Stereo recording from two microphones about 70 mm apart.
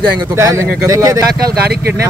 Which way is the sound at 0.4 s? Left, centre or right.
Right.